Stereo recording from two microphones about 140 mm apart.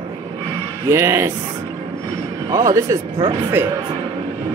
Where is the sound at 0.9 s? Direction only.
20° right (ahead or behind).